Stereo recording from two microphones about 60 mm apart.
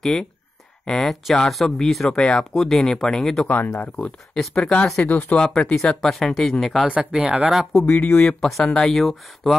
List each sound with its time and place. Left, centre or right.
0.0 s speech: centre
2.5 s speech: centre
3.4 s speech: left
4.3 s speech: centre
5.1 s speech: centre
5.5 s speech: centre
6.9 s speech: centre
7.8 s speech: centre
8.2 s speech: centre